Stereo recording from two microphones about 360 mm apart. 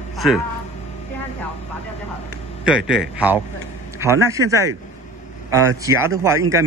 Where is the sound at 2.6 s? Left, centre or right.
Centre.